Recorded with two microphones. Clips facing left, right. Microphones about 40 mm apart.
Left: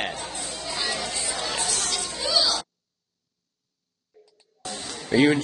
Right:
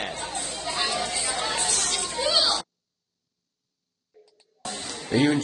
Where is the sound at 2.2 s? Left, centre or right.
Right.